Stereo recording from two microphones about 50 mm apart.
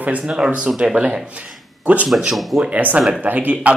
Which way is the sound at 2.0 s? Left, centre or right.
Centre.